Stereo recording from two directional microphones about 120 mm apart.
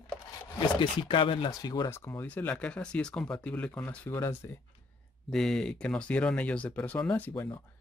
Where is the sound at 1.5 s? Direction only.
35° left (ahead or behind).